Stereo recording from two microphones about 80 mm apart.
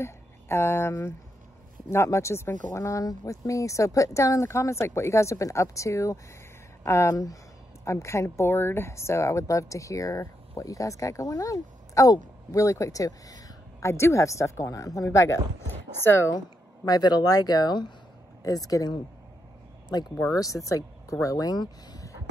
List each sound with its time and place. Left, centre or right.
0.0 s speech: left
15.7 s a sound: left
16.3 s speech: left
18.4 s speech: left
20.3 s speech: left